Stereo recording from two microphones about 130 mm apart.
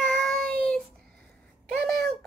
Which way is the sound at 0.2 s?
5° left (ahead or behind).